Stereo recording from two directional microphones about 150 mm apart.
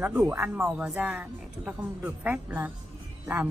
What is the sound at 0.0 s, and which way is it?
Speech, 10° right (ahead or behind).